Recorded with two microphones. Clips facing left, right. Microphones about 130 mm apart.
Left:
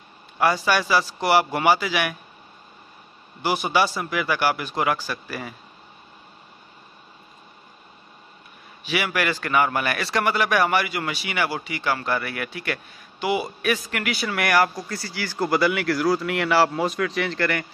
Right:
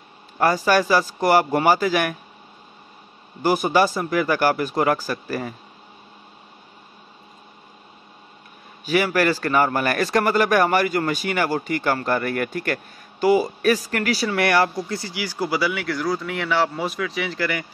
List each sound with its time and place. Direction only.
0.4 s a man's voice: 45° right (ahead or behind)
3.4 s a man's voice: 45° right (ahead or behind)
8.8 s a man's voice: 40° right (ahead or behind)
14.9 s speech: 20° right (ahead or behind)